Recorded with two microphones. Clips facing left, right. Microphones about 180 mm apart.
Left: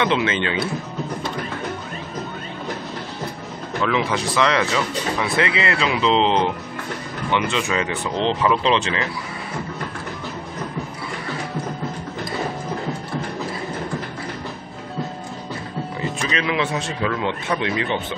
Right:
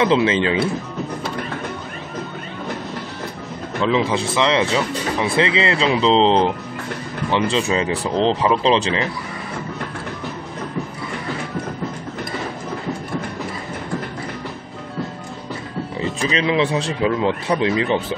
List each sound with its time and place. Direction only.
0.0 s speech: 30° right (ahead or behind)
3.8 s speech: 25° right (ahead or behind)
16.0 s speech: 30° right (ahead or behind)